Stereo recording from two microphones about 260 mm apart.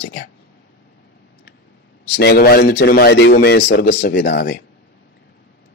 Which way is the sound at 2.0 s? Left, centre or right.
Left.